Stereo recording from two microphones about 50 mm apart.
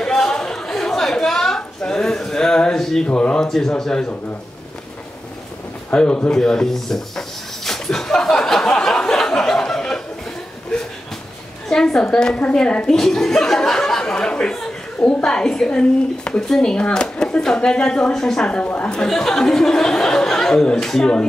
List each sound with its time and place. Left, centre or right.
0.0 s a sound: centre
3.2 s speech: centre
5.9 s speech: left
6.3 s a sound: centre
11.7 s speech: centre; by 15.2 s left
15.2 s speech: centre
18.6 s speech: left
18.9 s speech: centre